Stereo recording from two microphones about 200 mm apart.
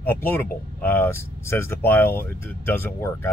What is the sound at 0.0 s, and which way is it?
Speech, 10° left (ahead or behind).